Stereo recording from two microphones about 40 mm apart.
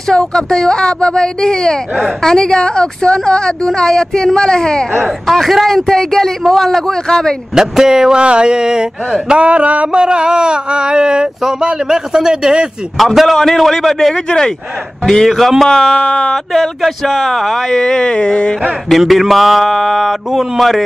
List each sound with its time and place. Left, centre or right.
0.1 s speech: centre
5.0 s speech: centre
7.1 s speech: centre
7.5 s speech: centre
9.4 s a sound: right
9.9 s speech: right
12.9 s a man's voice: centre
14.1 s speech: centre
15.2 s a man's voice: centre
15.7 s speech: centre
16.5 s speech: centre; by 18.6 s left
18.9 s a man's voice: centre